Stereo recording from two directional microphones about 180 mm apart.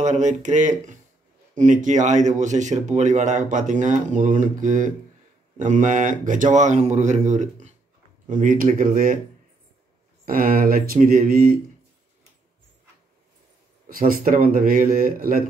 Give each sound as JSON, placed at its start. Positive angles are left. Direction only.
{"t": 0.0, "sound": "speech", "side_deg": -40}
{"t": 10.2, "sound": "speech", "side_deg": -55}
{"t": 13.8, "sound": "speech", "side_deg": -55}